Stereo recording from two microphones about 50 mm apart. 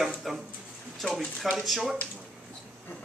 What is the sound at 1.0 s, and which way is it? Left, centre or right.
Speech, centre.